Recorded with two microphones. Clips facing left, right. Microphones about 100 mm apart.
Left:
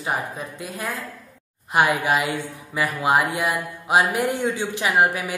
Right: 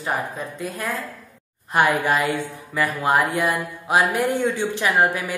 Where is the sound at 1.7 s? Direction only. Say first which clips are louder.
Right 1 dB; 15° left (ahead or behind).